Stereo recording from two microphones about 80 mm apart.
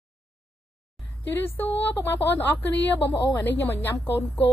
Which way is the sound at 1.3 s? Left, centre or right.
Left.